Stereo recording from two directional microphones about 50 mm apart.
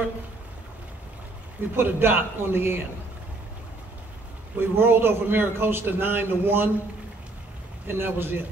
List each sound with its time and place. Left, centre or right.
1.8 s a man's voice: right
4.6 s a man's voice: right
7.8 s a man's voice: right